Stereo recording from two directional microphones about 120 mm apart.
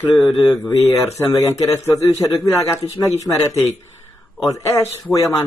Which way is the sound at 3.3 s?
10° left (ahead or behind).